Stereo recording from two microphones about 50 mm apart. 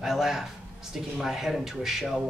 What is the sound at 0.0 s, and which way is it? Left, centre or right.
A man's voice, centre.